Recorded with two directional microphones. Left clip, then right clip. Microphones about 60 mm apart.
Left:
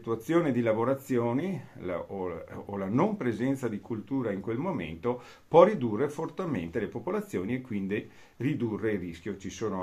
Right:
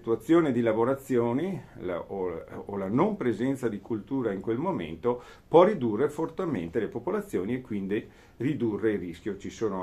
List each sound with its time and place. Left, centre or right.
0.3 s speech: right
9.6 s speech: centre